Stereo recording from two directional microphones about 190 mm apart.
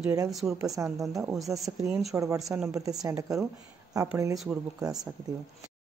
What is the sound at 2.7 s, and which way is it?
A man's voice, 20° right (ahead or behind).